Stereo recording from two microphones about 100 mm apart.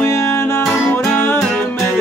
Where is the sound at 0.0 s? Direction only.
30° left (ahead or behind).